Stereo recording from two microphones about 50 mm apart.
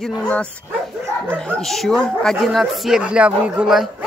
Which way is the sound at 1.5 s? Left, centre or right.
Centre.